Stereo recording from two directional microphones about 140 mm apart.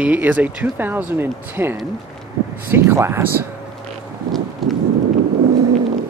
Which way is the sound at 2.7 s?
20° right (ahead or behind).